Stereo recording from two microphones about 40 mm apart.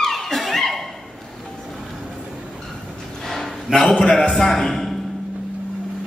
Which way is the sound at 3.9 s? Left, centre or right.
Centre.